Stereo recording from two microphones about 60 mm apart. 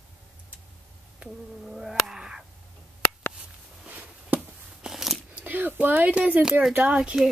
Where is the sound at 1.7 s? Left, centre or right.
Centre.